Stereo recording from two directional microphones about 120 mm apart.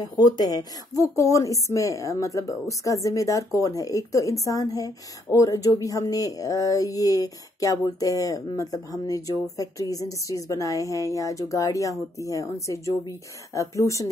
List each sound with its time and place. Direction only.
0.0 s a woman's voice: 30° left (ahead or behind)